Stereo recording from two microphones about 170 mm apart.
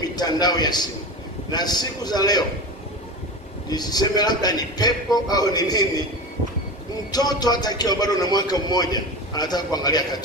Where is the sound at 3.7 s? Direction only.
25° left (ahead or behind).